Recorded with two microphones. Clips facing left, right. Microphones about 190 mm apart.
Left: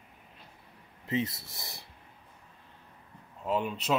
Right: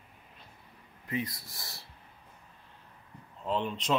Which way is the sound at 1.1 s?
25° left (ahead or behind).